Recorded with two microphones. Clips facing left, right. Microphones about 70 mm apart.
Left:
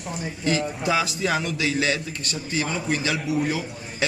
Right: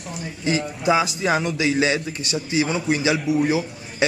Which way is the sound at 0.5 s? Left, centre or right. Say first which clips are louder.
Right 5 dB; centre.